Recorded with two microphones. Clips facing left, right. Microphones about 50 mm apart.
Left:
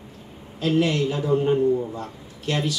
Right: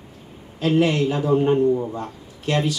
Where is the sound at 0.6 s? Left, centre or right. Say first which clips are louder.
Right 3 dB; centre.